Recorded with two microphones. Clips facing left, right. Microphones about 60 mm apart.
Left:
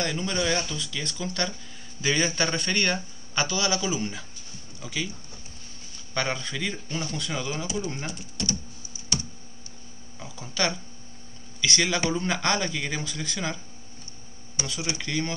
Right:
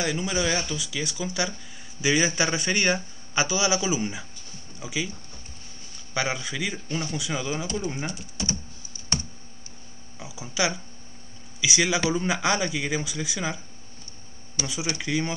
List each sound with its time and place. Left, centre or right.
0.0 s a man's voice: centre
6.1 s a man's voice: centre
10.1 s a man's voice: centre
14.6 s speech: left
15.0 s a man's voice: centre